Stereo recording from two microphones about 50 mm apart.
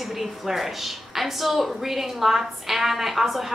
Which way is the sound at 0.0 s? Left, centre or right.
Centre.